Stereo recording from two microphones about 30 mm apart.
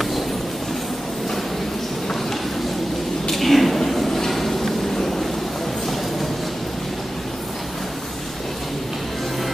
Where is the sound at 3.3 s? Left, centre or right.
Centre.